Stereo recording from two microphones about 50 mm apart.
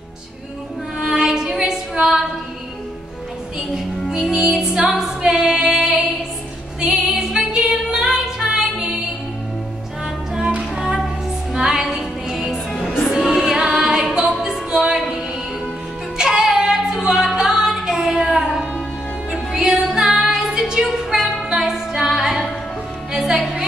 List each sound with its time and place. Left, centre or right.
0.9 s music: centre
3.5 s music: centre
11.5 s music: centre
16.2 s female singing: centre
19.5 s music: centre